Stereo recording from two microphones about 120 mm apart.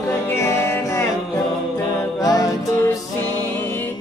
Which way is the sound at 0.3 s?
20° left (ahead or behind).